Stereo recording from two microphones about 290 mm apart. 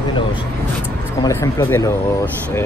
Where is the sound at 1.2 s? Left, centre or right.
Centre.